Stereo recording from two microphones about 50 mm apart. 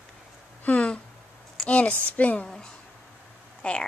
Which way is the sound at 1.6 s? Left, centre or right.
Left.